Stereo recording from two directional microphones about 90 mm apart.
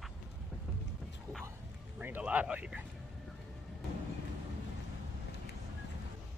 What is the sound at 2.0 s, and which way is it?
Speech, 20° right (ahead or behind).